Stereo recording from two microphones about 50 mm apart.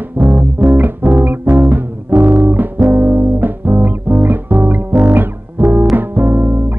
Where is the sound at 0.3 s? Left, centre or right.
Right.